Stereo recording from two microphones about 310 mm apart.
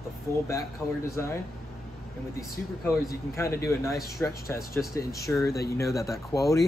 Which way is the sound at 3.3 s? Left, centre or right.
Centre.